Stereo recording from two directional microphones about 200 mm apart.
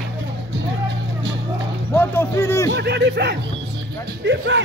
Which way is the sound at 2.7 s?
60° right (ahead or behind).